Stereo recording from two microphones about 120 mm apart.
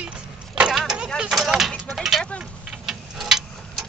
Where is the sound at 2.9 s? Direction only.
5° right (ahead or behind).